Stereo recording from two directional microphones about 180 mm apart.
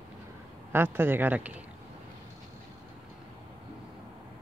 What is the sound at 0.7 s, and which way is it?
Speech, 10° right (ahead or behind).